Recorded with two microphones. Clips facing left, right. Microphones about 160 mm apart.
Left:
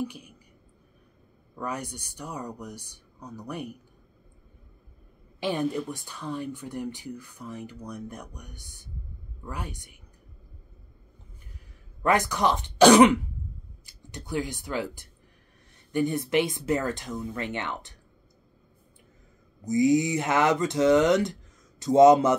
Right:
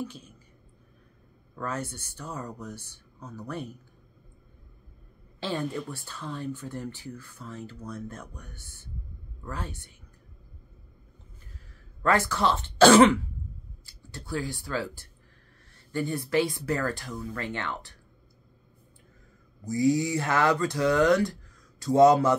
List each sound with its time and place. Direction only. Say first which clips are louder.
0.0 s a sound: left 3 dB; 15° left (ahead or behind)
1.5 s speech: even; 15° left (ahead or behind)
5.4 s speech: left 4 dB; 20° left (ahead or behind)
12.0 s speech: left 1 dB; 15° left (ahead or behind)
19.6 s speech: left 3 dB; 20° left (ahead or behind)